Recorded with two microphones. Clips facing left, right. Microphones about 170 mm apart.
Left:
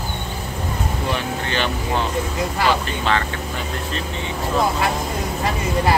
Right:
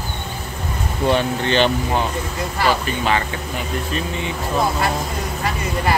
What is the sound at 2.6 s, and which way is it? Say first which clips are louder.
Speech: right 2 dB; 10° right (ahead or behind).